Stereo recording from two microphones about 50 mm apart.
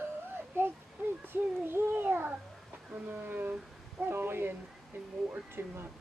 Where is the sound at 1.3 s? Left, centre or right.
Right.